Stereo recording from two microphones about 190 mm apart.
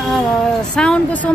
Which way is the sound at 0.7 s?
5° left (ahead or behind).